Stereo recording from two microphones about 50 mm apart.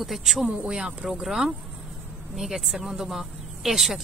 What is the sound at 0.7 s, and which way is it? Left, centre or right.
A woman's voice, centre.